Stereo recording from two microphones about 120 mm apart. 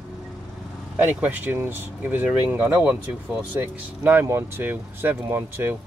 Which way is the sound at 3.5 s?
15° right (ahead or behind).